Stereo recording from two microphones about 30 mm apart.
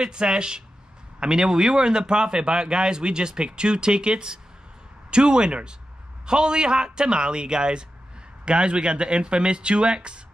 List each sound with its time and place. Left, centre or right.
0.0 s speech: right